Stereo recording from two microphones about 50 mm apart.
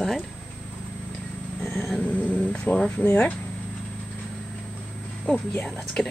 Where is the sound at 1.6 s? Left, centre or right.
Left.